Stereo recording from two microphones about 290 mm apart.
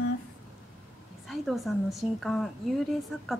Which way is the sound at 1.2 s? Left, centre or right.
Centre.